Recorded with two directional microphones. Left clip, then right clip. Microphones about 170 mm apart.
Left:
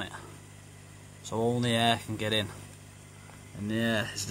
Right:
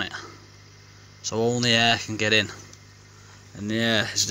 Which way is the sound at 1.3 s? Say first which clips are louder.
Right 7 dB; 20° right (ahead or behind).